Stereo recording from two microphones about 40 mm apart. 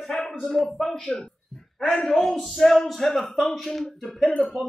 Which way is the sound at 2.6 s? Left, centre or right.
Centre.